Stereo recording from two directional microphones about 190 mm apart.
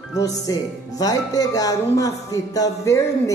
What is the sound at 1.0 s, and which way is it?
A man's voice, 20° left (ahead or behind).